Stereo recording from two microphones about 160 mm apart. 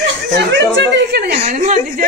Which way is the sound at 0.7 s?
90° right.